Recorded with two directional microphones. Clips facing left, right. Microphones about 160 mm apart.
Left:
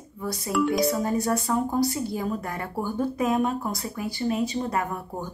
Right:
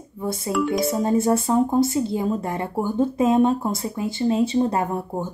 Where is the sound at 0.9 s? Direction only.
25° right (ahead or behind).